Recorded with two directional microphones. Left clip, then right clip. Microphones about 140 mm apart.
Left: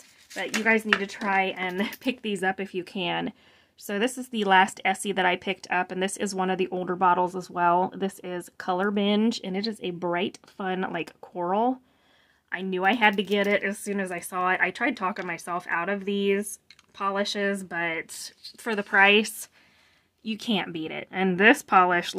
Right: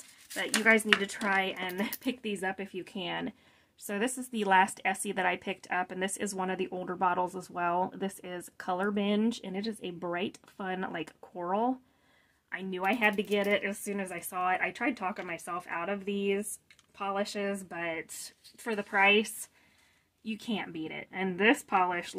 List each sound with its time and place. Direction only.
0.3 s speech: centre (ahead or behind)
1.8 s a woman's voice: 30° left (ahead or behind); by 22.1 s 55° left (ahead or behind)